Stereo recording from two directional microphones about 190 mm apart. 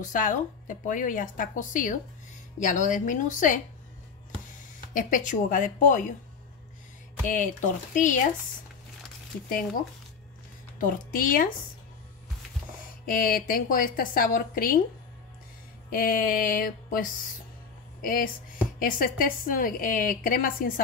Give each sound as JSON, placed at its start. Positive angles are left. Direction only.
{"t": 0.0, "sound": "a woman's voice", "side_deg": 45}
{"t": 4.9, "sound": "a woman's voice", "side_deg": 45}
{"t": 7.2, "sound": "speech", "side_deg": 45}
{"t": 10.8, "sound": "a woman's voice", "side_deg": 45}
{"t": 13.0, "sound": "a woman's voice", "side_deg": 50}
{"t": 15.9, "sound": "a woman's voice", "side_deg": 50}